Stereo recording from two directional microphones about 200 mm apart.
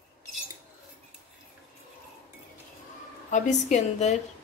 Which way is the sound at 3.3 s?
35° left (ahead or behind).